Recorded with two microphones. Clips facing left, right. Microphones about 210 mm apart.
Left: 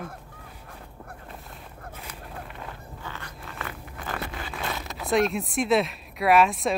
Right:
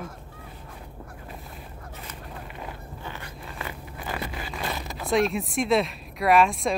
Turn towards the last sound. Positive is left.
turn(degrees=0)  # may be behind; listen again after turning